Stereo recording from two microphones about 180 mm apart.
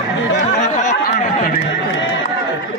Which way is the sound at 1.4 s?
55° left (ahead or behind).